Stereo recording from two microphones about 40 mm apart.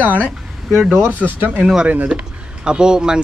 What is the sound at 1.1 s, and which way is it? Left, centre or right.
Speech, right.